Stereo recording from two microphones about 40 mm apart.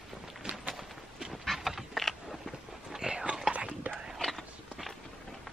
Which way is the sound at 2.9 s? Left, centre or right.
Right.